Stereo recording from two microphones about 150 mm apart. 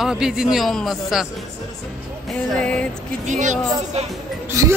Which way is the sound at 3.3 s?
55° right (ahead or behind).